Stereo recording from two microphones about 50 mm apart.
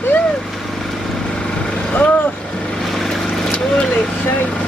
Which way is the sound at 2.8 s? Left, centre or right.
Centre.